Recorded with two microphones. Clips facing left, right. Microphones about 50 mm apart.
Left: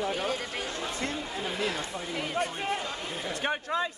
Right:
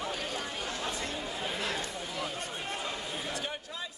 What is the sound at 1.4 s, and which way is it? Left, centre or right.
Chatter, centre.